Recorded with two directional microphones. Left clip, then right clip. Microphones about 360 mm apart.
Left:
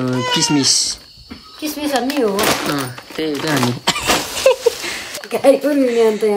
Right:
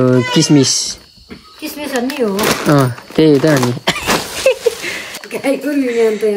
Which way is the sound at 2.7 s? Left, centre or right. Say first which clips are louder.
Right 10 dB; centre.